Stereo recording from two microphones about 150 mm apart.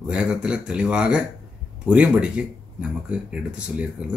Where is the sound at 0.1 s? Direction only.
5° right (ahead or behind).